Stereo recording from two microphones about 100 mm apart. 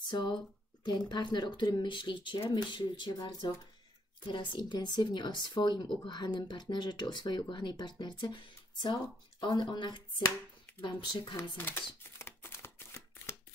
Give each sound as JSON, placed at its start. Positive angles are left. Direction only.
{"t": 0.1, "sound": "speech", "side_deg": 50}
{"t": 4.3, "sound": "speech", "side_deg": 50}
{"t": 11.5, "sound": "shuffling cards", "side_deg": 20}